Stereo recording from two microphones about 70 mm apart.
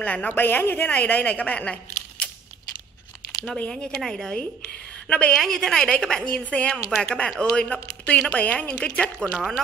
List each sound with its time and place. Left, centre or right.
0.0 s a woman's voice: left
3.5 s speech: centre
3.9 s speech: centre
9.2 s speech: centre